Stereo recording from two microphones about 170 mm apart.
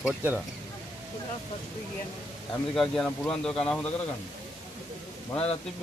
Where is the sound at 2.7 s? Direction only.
5° left (ahead or behind).